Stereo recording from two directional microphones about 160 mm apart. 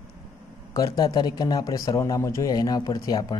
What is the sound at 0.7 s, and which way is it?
Speech, 25° left (ahead or behind).